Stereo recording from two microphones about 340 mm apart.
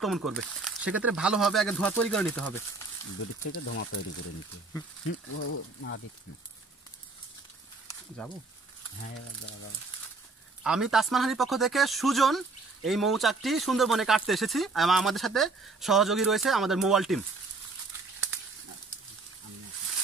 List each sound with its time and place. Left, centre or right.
0.0 s speech: centre
3.4 s speech: left
5.0 s speech: left
8.2 s speech: centre
10.6 s speech: centre